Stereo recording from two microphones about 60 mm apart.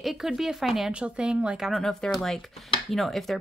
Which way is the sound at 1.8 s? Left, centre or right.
Centre.